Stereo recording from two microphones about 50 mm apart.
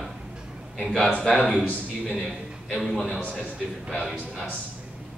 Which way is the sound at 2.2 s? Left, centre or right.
Centre.